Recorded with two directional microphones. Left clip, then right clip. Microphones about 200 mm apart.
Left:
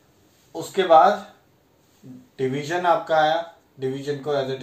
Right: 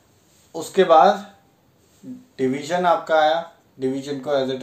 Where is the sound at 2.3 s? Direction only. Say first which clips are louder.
Right 3 dB; 45° right (ahead or behind).